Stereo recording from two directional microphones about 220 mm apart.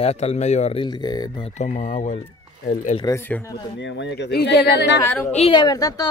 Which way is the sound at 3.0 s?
10° left (ahead or behind).